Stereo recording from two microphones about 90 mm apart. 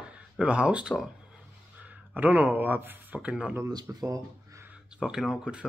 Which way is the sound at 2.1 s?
20° right (ahead or behind).